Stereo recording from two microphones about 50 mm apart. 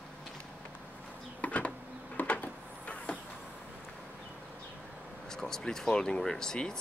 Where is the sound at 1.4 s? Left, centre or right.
Left.